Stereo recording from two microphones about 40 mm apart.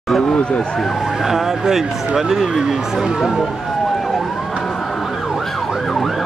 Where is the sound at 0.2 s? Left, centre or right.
Left.